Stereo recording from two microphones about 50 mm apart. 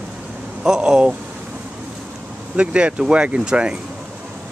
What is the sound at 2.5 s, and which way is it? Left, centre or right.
Speech, right.